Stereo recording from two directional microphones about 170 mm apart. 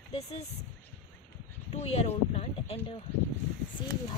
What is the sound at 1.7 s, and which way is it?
Speech, 40° left (ahead or behind).